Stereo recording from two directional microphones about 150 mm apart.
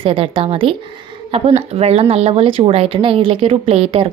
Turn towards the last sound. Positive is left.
turn(degrees=-40)  # may be behind; listen again after turning